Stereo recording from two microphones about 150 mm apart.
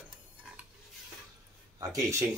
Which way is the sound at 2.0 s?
20° right (ahead or behind).